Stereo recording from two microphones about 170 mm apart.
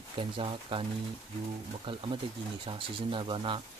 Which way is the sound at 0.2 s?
30° right (ahead or behind).